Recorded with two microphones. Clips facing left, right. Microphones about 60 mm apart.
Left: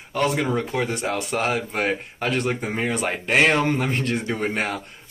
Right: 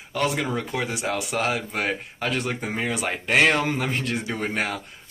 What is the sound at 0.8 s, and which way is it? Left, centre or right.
Speech, centre.